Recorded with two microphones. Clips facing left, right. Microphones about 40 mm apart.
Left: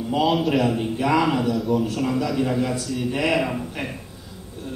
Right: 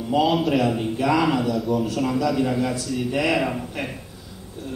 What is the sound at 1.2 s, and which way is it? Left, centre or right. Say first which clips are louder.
A man's voice: even; centre.